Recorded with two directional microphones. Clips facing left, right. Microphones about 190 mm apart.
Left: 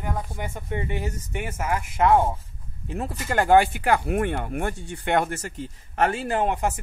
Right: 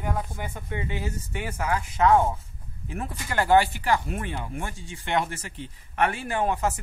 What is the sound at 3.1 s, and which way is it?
Speech, 45° left (ahead or behind).